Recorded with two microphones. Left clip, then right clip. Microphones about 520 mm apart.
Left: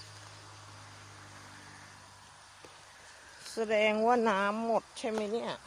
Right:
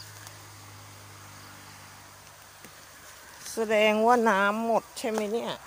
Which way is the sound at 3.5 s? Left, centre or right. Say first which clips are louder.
Right 5 dB; left.